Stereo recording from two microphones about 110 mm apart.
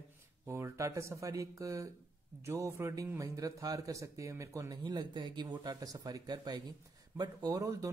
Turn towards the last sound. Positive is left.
turn(degrees=-30)  # may be behind; listen again after turning